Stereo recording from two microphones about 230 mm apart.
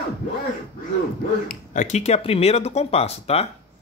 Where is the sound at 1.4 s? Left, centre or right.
Left.